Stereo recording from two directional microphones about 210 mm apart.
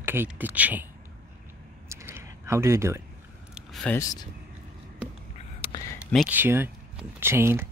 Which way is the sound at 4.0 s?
15° left (ahead or behind).